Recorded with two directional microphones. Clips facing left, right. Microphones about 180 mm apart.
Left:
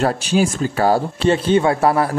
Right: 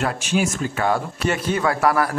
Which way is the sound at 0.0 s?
35° left (ahead or behind).